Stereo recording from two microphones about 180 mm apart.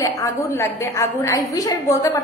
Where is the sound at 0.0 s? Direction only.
15° left (ahead or behind).